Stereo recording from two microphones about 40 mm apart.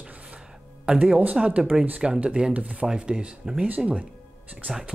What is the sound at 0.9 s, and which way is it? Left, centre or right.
Speech, right.